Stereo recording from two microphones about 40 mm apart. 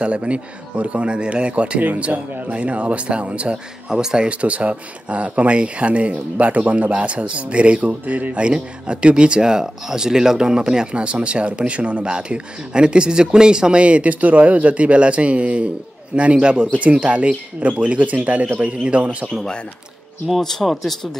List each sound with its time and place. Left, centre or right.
0.0 s speech: right
3.9 s speech: centre
4.3 s speech: right
16.7 s speech: right
20.7 s speech: centre